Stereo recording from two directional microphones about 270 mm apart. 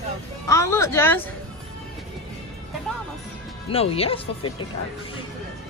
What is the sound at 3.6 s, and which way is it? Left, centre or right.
Speech, left.